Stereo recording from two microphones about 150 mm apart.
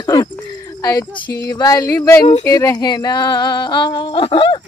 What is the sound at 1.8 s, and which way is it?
Speech, 15° left (ahead or behind).